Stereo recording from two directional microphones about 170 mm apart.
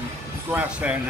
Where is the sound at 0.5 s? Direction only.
10° right (ahead or behind).